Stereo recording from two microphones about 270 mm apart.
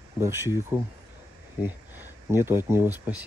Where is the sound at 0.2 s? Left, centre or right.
Centre.